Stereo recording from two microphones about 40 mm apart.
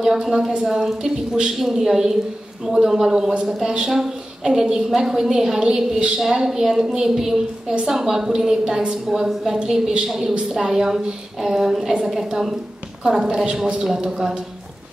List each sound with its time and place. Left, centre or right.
0.0 s a woman's voice: centre